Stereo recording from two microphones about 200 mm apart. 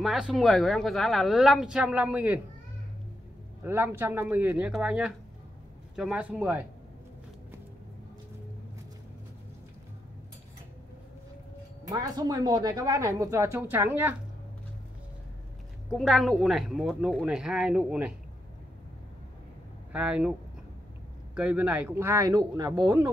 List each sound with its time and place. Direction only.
0.0 s speech: centre (ahead or behind)
3.6 s speech: 10° right (ahead or behind)
11.9 s speech: 20° right (ahead or behind)
15.9 s speech: centre (ahead or behind)
19.9 s speech: 5° right (ahead or behind)
21.4 s speech: 5° right (ahead or behind)